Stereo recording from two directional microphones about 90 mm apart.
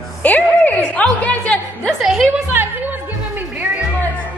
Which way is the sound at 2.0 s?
5° right (ahead or behind).